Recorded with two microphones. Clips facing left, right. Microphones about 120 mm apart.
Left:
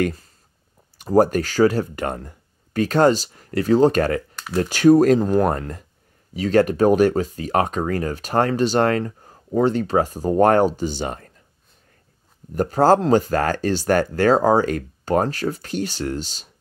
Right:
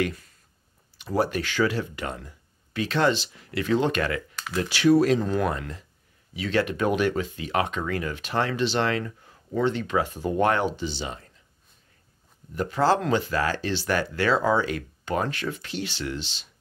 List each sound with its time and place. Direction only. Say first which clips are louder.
0.0 s speech: left 5 dB; 35° left (ahead or behind); by 11.4 s 50° left (ahead or behind)
12.5 s speech: left 7 dB; 40° left (ahead or behind)